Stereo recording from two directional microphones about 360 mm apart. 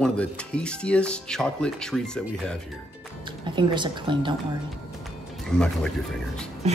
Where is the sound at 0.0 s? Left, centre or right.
Centre.